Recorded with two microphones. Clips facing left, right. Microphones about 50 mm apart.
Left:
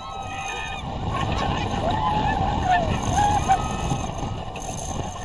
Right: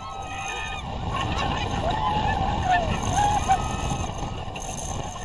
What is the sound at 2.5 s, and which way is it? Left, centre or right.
Vehicle, centre.